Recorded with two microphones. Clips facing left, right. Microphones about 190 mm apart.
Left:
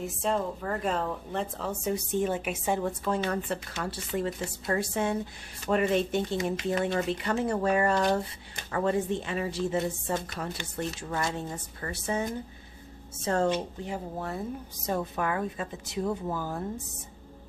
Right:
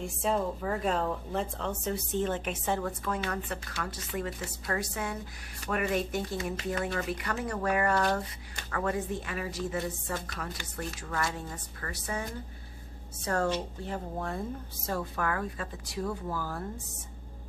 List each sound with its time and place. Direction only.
0.0 s a woman's voice: centre (ahead or behind); by 2.9 s 15° left (ahead or behind)
3.1 s speech: 30° left (ahead or behind)
13.8 s a woman's voice: 5° left (ahead or behind)
14.9 s speech: 20° left (ahead or behind)